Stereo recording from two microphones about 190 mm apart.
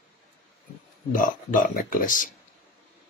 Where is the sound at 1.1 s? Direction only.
45° left (ahead or behind).